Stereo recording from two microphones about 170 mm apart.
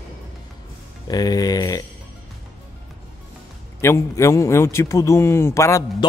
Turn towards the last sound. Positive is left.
turn(degrees=15)  # may be behind; listen again after turning